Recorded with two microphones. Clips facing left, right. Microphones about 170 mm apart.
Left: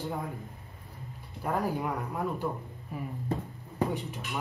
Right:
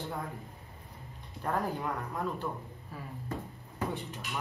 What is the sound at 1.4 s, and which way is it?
Speech, 10° left (ahead or behind).